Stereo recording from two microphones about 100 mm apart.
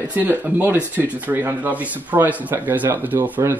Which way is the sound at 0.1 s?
20° right (ahead or behind).